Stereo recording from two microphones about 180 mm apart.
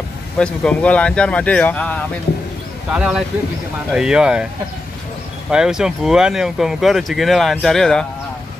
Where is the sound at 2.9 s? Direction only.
5° right (ahead or behind).